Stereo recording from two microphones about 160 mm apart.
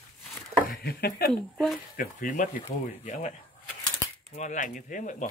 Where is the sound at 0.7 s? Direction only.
75° left (ahead or behind); by 3.3 s 50° left (ahead or behind).